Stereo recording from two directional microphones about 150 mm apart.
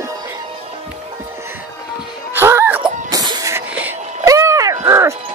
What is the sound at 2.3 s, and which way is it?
Music, 15° right (ahead or behind).